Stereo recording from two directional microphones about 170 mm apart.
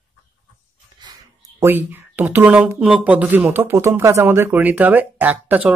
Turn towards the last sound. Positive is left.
turn(degrees=-10)  # may be behind; listen again after turning